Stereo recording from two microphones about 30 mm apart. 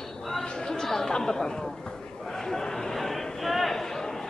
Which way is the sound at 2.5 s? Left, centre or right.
Centre.